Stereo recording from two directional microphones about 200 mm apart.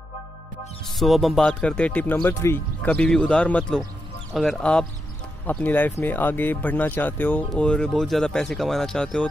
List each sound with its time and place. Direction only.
0.8 s speech: centre (ahead or behind)